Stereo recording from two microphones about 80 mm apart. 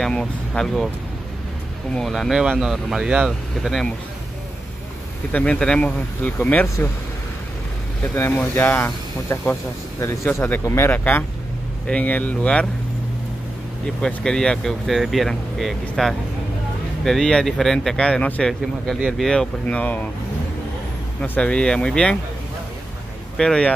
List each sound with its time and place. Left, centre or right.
0.0 s speech: centre
2.0 s speech: centre
5.3 s speech: centre
8.0 s speech: left
10.9 s speech: left
14.0 s speech: centre
19.6 s speech: centre
21.2 s speech: centre
23.3 s speech: centre